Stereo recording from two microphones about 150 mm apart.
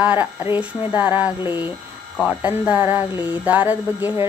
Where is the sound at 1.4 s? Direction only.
30° left (ahead or behind).